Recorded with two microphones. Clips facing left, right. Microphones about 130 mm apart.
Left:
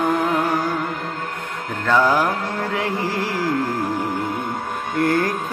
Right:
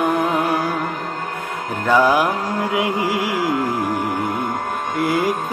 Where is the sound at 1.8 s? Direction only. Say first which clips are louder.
Right 2 dB; 10° right (ahead or behind).